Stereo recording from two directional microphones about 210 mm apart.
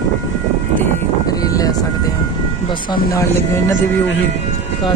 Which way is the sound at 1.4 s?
15° left (ahead or behind).